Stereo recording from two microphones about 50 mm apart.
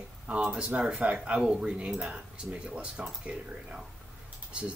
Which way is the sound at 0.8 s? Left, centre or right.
Centre.